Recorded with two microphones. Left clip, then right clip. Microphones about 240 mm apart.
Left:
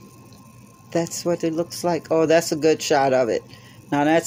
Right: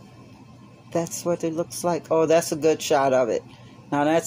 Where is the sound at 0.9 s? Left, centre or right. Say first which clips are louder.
Left 2 dB; centre.